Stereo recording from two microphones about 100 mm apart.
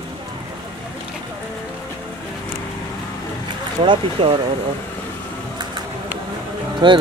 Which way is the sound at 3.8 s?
60° right (ahead or behind).